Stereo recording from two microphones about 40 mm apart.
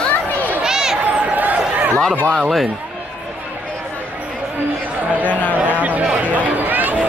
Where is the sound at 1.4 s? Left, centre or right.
Right.